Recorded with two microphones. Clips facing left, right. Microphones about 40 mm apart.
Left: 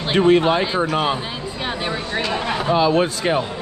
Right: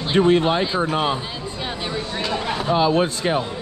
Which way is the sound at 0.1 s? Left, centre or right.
Left.